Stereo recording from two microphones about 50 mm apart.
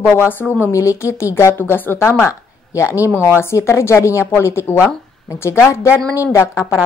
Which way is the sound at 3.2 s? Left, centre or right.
Left.